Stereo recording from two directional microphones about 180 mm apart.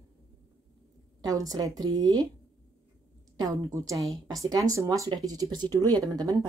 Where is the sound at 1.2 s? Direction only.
20° right (ahead or behind).